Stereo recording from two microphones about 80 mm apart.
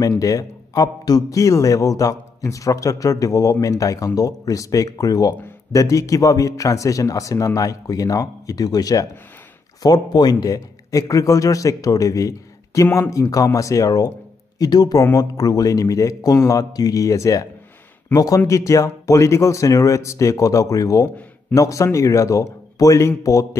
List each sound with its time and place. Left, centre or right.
0.0 s speech: left
18.1 s speech: left
18.5 s speech: left